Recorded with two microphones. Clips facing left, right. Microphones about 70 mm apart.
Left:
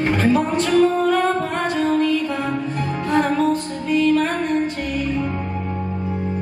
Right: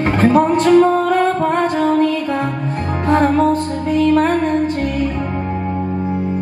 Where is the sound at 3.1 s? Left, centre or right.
Right.